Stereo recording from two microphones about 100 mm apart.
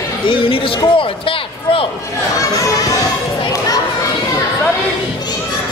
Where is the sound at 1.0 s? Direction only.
60° left (ahead or behind).